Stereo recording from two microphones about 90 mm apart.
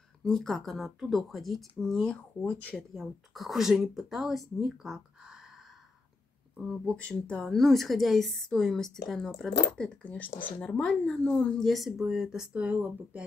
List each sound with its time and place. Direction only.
0.2 s a woman's voice: 5° left (ahead or behind)
2.4 s speech: 15° left (ahead or behind)
2.9 s a woman's voice: centre (ahead or behind)
6.5 s speech: 5° right (ahead or behind)
6.9 s speech: 10° left (ahead or behind)
7.4 s a woman's voice: centre (ahead or behind)
11.6 s a woman's voice: centre (ahead or behind)